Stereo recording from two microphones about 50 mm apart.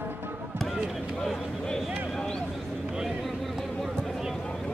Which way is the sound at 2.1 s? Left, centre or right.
Centre.